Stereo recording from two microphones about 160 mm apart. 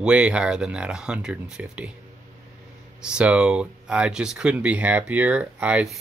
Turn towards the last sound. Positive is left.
turn(degrees=-10)  # may be behind; listen again after turning